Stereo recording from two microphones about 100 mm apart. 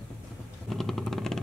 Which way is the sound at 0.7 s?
Centre (ahead or behind).